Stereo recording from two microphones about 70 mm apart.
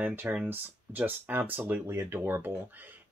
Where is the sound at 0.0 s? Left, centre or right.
Right.